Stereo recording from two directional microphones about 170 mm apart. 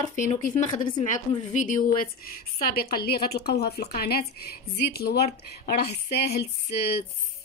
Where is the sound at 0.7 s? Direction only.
25° left (ahead or behind).